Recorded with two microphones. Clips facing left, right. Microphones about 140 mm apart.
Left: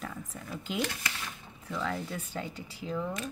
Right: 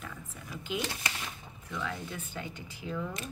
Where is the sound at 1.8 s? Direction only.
35° left (ahead or behind).